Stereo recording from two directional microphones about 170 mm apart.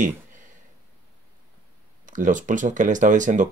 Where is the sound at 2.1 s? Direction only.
50° right (ahead or behind).